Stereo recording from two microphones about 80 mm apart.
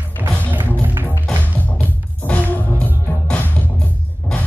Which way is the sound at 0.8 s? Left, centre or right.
Right.